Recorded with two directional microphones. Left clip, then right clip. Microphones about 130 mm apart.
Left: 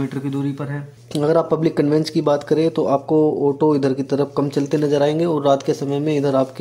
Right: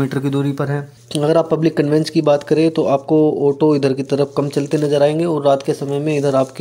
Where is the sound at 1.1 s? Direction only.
25° right (ahead or behind).